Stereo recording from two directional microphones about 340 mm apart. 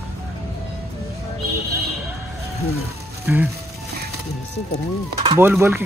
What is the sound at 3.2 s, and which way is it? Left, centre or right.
Speech, centre.